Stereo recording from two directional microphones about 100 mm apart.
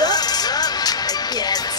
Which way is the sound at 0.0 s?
40° left (ahead or behind).